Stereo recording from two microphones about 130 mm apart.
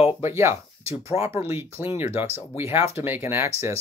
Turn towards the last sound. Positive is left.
turn(degrees=-20)  # may be behind; listen again after turning